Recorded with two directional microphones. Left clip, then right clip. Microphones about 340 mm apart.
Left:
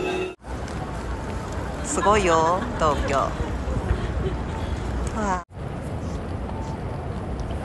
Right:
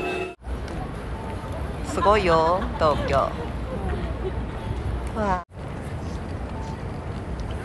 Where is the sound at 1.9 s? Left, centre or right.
Centre.